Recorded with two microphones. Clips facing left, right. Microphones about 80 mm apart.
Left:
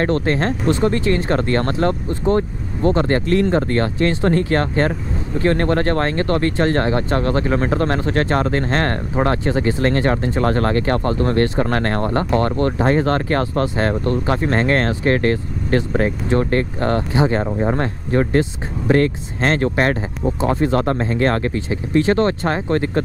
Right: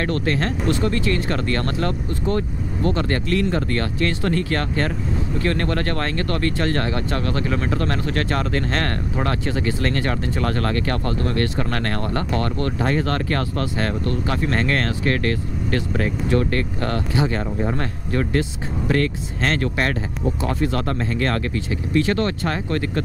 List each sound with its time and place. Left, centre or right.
0.0 s speech: left